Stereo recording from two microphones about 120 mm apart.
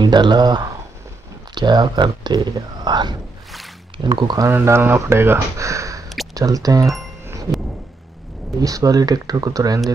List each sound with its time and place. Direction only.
0.0 s speech: 40° right (ahead or behind)
4.5 s speech: 20° right (ahead or behind)
6.3 s a sound: 30° right (ahead or behind)
8.5 s speech: 30° right (ahead or behind)